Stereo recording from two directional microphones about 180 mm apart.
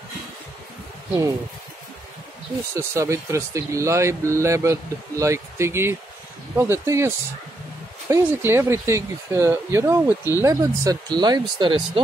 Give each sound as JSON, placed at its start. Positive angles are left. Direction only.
{"t": 2.7, "sound": "speech", "side_deg": -15}
{"t": 8.1, "sound": "speech", "side_deg": -15}